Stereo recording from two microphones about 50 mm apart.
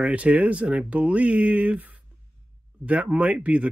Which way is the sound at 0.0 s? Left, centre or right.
Right.